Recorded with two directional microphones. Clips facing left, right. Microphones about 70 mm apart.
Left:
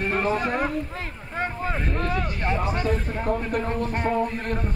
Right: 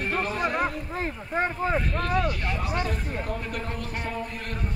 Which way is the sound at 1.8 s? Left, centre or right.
Left.